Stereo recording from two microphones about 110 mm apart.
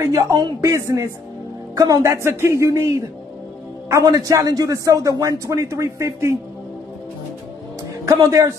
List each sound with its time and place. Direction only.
0.0 s a man's voice: 30° right (ahead or behind)
8.0 s speech: 30° right (ahead or behind)